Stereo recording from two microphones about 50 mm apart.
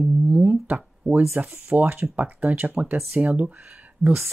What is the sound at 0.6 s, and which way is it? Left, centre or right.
Speech, right.